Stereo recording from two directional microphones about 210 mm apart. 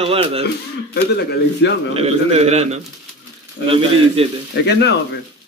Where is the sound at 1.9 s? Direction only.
30° right (ahead or behind).